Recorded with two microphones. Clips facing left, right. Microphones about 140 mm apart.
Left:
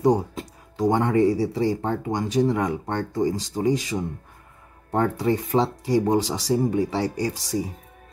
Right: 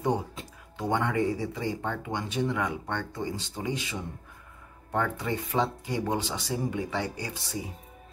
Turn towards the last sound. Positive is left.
turn(degrees=40)  # may be behind; listen again after turning